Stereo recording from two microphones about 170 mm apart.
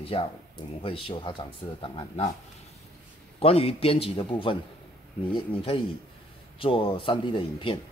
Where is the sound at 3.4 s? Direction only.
35° left (ahead or behind).